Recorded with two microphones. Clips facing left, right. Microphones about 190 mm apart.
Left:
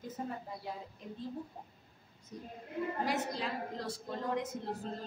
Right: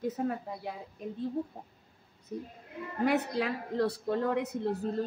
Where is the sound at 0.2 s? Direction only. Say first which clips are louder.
Right 7 dB; 55° right (ahead or behind).